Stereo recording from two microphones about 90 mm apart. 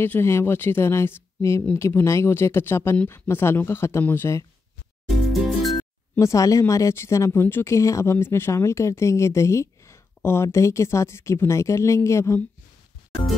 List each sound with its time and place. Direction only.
0.0 s speech: 25° left (ahead or behind)
5.0 s music: centre (ahead or behind)
6.1 s speech: 35° left (ahead or behind)